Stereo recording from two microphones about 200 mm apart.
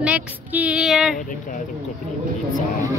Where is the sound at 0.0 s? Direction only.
5° right (ahead or behind).